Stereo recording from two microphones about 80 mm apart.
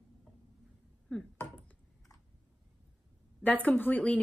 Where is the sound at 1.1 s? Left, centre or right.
Centre.